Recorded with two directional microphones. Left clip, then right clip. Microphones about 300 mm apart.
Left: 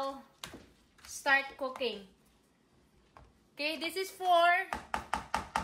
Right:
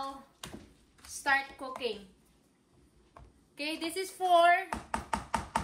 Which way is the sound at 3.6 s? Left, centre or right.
Centre.